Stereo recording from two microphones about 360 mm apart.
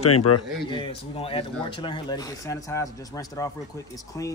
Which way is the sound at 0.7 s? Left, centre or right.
Centre.